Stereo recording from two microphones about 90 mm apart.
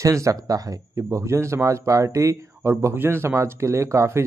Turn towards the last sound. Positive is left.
turn(degrees=-30)  # may be behind; listen again after turning